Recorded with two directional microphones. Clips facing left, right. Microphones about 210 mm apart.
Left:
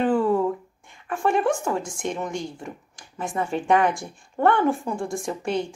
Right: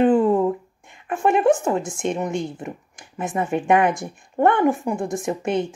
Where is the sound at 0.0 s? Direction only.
20° right (ahead or behind).